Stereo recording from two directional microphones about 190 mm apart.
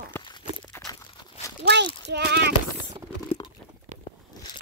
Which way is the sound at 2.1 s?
60° right (ahead or behind).